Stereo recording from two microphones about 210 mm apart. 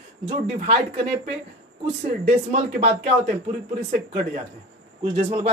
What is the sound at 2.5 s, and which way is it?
Speech, 35° right (ahead or behind).